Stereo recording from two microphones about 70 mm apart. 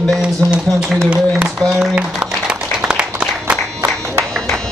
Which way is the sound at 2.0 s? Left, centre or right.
Centre.